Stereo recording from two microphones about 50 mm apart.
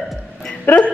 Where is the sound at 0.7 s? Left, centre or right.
Left.